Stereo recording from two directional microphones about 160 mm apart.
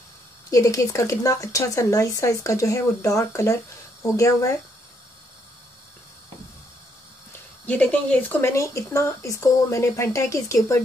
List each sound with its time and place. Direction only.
0.5 s speech: 20° left (ahead or behind)
7.6 s speech: 10° left (ahead or behind)